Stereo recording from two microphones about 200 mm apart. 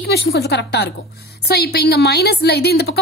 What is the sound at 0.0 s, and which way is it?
A woman's voice, 55° left (ahead or behind).